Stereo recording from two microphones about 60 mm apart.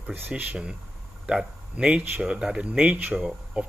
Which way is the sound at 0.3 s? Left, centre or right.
Centre.